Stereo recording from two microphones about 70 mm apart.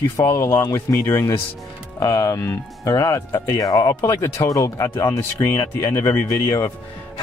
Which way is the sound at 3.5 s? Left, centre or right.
Left.